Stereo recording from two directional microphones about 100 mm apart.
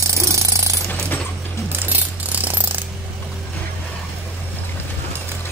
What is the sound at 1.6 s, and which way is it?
Mechanisms, 20° right (ahead or behind).